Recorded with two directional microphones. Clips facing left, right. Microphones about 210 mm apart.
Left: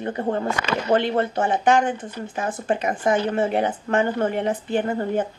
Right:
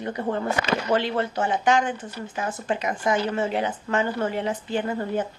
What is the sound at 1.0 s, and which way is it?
A woman's voice, 55° left (ahead or behind).